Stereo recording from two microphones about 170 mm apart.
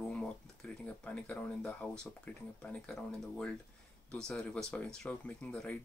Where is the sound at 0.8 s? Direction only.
10° left (ahead or behind).